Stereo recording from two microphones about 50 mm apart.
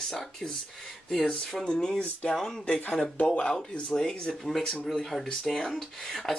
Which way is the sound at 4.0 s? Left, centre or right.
Centre.